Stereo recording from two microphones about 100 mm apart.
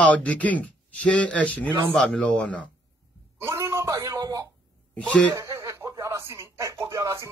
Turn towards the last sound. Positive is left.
turn(degrees=-30)  # may be behind; listen again after turning